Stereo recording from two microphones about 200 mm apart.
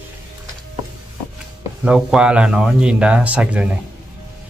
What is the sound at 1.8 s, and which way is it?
Speech, 5° right (ahead or behind).